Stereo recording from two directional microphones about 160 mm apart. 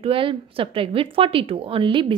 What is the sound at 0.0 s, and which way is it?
A woman's voice, 35° right (ahead or behind).